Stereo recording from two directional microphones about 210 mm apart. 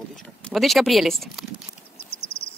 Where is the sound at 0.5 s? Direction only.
Centre (ahead or behind).